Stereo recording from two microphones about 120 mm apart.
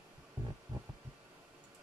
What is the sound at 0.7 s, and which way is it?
Heart sounds, 35° right (ahead or behind).